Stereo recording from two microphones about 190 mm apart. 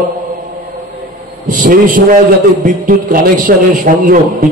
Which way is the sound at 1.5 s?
45° right (ahead or behind).